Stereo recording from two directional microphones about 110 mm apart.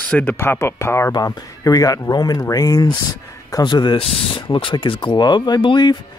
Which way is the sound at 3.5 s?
45° left (ahead or behind).